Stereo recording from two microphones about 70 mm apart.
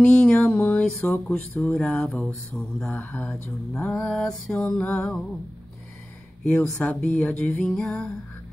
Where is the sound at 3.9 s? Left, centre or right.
Centre.